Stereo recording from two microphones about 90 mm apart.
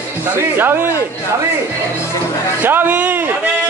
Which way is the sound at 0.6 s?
25° right (ahead or behind).